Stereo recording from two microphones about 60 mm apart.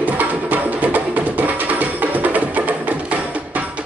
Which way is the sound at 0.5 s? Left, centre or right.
Right.